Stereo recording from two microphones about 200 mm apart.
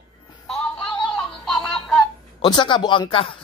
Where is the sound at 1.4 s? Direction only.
Centre (ahead or behind).